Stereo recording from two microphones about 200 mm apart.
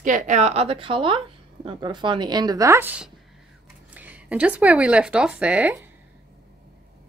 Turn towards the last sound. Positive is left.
turn(degrees=-5)  # may be behind; listen again after turning